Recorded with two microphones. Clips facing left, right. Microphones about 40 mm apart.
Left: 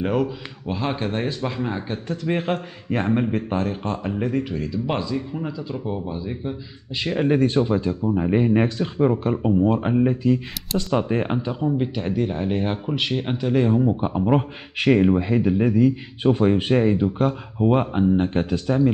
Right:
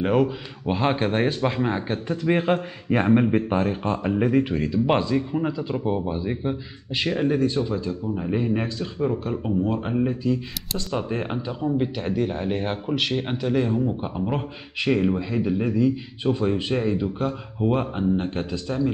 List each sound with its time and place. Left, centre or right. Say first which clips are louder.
0.0 s speech: right 2 dB; centre
4.2 s speech: right 5 dB; right
7.1 s speech: left 2 dB; centre
7.4 s a man's voice: left 4 dB; left
8.0 s speech: left 5 dB; left
8.6 s speech: left 5 dB; left; by 11.5 s centre
11.6 s speech: right 2 dB; centre
13.6 s speech: left 6 dB; centre
15.3 s speech: left 4 dB; centre
15.7 s a man's voice: left 3 dB; left
16.7 s speech: left 5 dB; left
18.5 s a man's voice: left 5 dB; left